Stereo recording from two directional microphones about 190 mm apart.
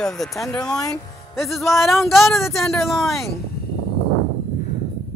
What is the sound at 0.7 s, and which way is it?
Speech, 15° left (ahead or behind).